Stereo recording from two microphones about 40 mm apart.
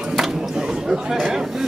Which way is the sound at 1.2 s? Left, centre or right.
Centre.